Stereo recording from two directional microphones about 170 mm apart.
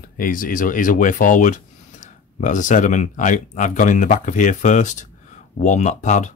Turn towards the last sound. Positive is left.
turn(degrees=45)  # may be behind; listen again after turning